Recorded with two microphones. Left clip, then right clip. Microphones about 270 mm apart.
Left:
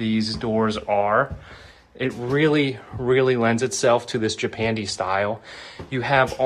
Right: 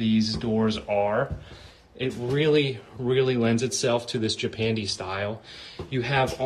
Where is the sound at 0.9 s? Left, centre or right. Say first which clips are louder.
Left 5 dB; left.